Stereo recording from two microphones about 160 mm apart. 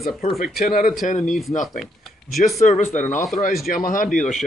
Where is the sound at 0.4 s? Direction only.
65° left (ahead or behind).